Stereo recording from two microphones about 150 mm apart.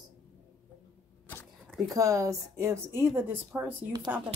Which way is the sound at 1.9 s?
20° right (ahead or behind).